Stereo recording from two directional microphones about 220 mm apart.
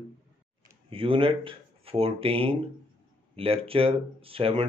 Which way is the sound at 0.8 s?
25° right (ahead or behind).